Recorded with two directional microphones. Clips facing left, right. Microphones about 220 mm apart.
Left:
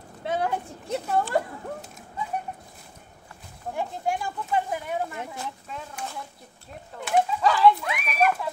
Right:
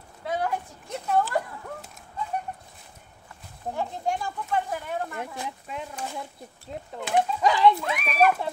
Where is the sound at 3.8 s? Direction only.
10° left (ahead or behind).